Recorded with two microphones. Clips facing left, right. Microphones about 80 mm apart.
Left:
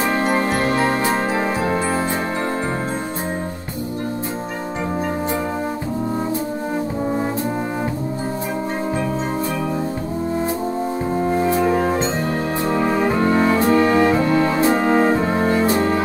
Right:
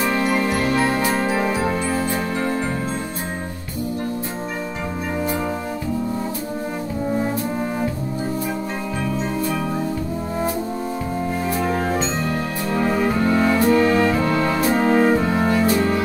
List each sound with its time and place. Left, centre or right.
0.0 s music: left
11.3 s music: left